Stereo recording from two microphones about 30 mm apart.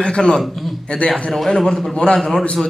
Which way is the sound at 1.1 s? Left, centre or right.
Centre.